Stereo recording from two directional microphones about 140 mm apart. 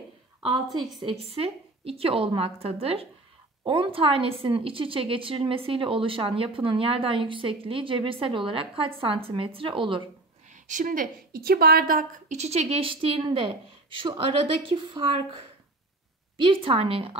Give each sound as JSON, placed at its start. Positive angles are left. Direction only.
{"t": 0.7, "sound": "a woman's voice", "side_deg": 0}
{"t": 1.0, "sound": "a woman's voice", "side_deg": -45}
{"t": 10.5, "sound": "a woman's voice", "side_deg": -65}
{"t": 12.4, "sound": "a woman's voice", "side_deg": -50}
{"t": 16.3, "sound": "a woman's voice", "side_deg": -40}